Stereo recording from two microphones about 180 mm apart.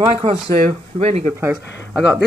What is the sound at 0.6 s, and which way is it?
Speech, 35° right (ahead or behind).